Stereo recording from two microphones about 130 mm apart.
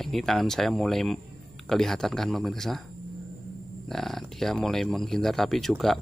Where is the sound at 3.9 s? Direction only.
Centre (ahead or behind).